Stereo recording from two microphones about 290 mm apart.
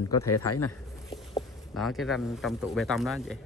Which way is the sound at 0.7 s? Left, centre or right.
Centre.